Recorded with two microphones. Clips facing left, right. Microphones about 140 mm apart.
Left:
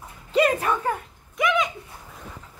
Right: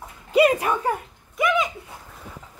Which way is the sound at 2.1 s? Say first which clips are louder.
Left 2 dB; 5° right (ahead or behind).